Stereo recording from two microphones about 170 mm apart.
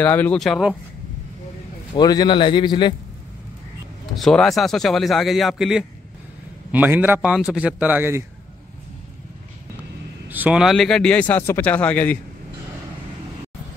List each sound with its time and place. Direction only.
0.0 s a man's voice: 10° left (ahead or behind)
2.0 s a man's voice: 25° left (ahead or behind)
4.1 s a man's voice: centre (ahead or behind)
10.2 s a man's voice: 10° right (ahead or behind); by 12.2 s 10° left (ahead or behind)